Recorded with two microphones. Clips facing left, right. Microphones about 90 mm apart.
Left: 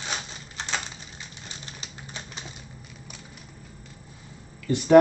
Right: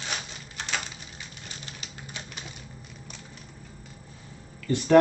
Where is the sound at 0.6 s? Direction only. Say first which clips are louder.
Left 1 dB; 30° left (ahead or behind).